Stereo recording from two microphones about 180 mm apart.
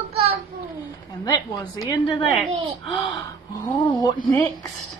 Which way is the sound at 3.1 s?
20° left (ahead or behind).